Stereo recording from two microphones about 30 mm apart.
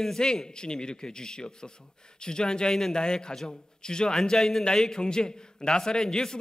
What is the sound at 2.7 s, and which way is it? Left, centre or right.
Speech, centre.